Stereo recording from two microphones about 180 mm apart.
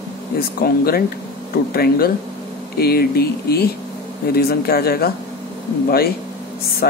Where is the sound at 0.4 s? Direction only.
55° left (ahead or behind).